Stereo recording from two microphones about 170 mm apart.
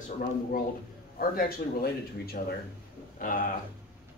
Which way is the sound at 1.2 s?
60° left (ahead or behind).